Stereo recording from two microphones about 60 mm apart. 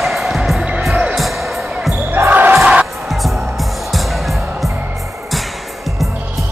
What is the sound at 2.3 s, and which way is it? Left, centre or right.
Music, right.